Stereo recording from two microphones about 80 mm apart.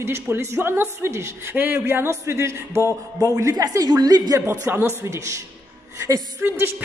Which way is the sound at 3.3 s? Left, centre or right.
Right.